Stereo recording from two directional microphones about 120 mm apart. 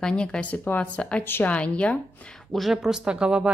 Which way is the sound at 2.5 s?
Centre (ahead or behind).